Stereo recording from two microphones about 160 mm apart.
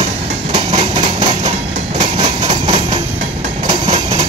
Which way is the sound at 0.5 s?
30° right (ahead or behind).